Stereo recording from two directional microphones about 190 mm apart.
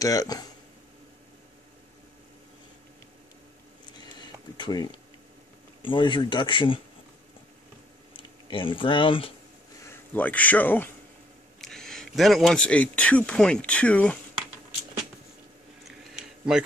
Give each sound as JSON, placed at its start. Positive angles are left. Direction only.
{"t": 0.0, "sound": "speech", "side_deg": 20}
{"t": 4.0, "sound": "a sound", "side_deg": 25}
{"t": 5.8, "sound": "speech", "side_deg": 25}
{"t": 8.1, "sound": "speech", "side_deg": 25}
{"t": 9.8, "sound": "speech", "side_deg": 10}
{"t": 15.8, "sound": "a sound", "side_deg": 0}